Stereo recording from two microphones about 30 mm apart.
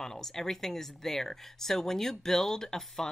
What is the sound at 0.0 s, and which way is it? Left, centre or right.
Speech, centre.